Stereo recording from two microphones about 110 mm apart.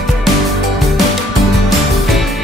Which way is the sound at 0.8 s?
Centre (ahead or behind).